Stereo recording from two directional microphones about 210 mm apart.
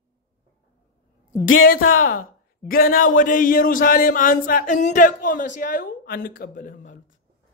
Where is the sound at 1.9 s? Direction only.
80° left.